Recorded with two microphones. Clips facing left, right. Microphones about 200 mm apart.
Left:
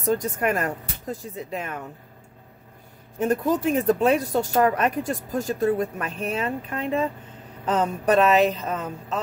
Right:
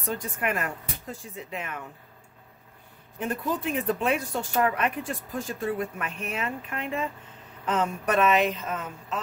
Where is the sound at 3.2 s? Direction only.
45° left (ahead or behind).